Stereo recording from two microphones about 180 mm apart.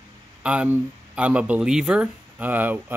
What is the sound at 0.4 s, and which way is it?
Speech, 5° right (ahead or behind).